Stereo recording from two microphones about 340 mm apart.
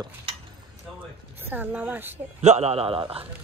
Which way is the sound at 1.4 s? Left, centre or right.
Centre.